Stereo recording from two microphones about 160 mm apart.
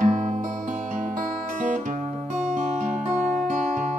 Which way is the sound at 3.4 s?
50° right (ahead or behind).